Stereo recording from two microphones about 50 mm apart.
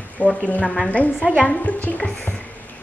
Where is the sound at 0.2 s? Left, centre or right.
Left.